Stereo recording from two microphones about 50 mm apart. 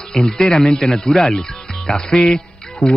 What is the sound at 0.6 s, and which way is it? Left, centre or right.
Speech, centre.